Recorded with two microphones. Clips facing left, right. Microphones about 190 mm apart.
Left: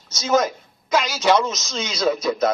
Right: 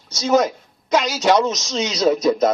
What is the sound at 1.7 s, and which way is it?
Speech, 40° right (ahead or behind).